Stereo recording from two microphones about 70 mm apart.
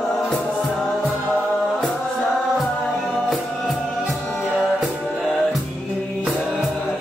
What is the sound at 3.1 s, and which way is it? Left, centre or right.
Music, centre.